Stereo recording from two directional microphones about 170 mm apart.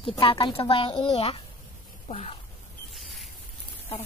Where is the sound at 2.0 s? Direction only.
40° left (ahead or behind).